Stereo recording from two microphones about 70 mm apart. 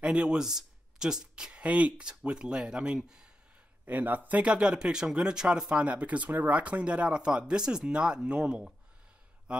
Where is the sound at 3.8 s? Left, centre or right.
Right.